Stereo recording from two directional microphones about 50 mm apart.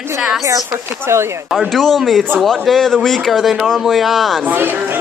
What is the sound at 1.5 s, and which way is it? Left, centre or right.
A man's voice, centre.